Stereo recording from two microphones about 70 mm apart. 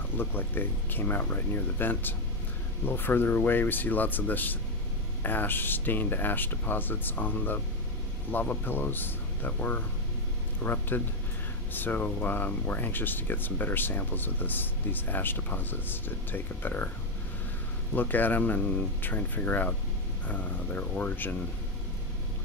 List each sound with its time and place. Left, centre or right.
0.2 s speech: left
17.9 s speech: left